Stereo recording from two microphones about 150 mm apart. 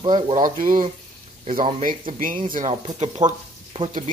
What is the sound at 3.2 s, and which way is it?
Speech, 30° right (ahead or behind).